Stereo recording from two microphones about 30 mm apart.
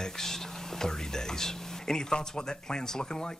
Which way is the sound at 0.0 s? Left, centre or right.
Centre.